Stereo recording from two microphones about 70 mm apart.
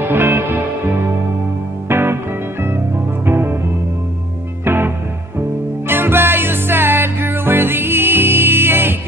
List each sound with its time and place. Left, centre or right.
0.0 s music: right
1.9 s music: right
3.3 s music: right
4.6 s music: right